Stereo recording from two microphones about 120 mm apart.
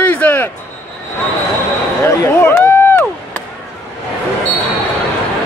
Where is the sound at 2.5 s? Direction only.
20° left (ahead or behind).